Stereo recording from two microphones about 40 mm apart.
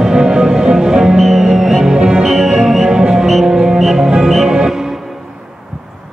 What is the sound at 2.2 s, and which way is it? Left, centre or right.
Music, centre.